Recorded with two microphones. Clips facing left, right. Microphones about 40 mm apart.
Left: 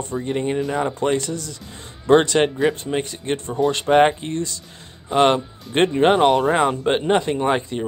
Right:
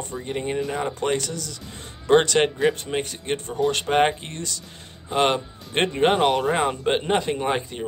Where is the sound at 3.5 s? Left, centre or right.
Centre.